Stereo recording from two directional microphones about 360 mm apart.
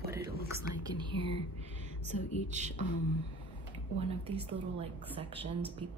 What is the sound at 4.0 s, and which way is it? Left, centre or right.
A woman's voice, centre.